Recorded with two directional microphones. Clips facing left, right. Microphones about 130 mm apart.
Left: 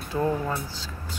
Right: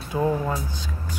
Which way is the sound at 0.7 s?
15° right (ahead or behind).